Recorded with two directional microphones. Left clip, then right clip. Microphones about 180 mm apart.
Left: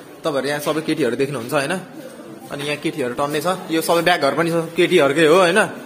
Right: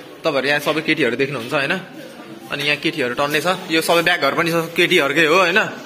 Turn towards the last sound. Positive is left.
turn(degrees=15)  # may be behind; listen again after turning